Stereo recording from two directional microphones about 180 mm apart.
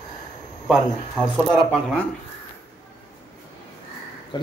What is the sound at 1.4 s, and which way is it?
Speech, centre (ahead or behind).